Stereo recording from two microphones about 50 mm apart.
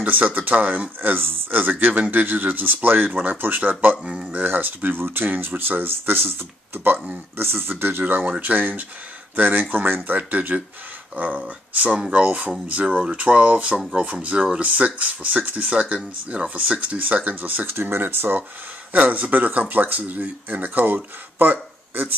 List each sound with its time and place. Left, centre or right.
0.0 s speech: right
4.0 s speech: centre
4.3 s speech: right
17.7 s speech: right
18.9 s speech: right